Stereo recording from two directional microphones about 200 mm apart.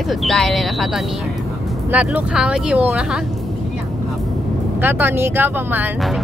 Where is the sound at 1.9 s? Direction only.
5° right (ahead or behind).